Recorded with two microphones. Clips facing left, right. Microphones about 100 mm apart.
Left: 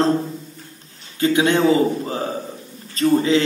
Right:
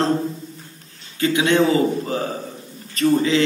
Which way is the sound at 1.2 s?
30° left (ahead or behind).